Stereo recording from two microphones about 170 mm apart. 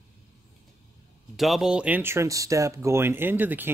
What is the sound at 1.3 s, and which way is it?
Speech, centre (ahead or behind).